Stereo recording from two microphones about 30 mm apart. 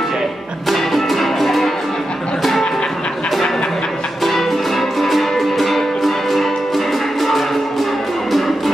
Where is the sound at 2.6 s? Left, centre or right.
Left.